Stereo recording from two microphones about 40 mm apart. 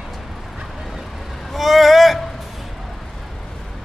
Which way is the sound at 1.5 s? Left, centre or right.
Centre.